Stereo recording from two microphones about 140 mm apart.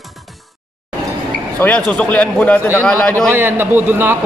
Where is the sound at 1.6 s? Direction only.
10° left (ahead or behind).